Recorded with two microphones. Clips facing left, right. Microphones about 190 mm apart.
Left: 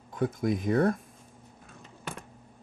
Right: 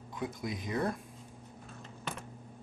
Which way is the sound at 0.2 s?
50° left (ahead or behind).